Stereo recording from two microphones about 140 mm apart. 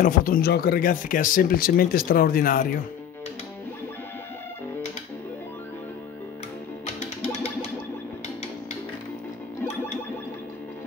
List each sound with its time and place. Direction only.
0.0 s speech: 90° left